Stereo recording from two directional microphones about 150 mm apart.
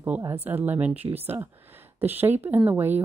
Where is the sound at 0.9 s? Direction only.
40° right (ahead or behind).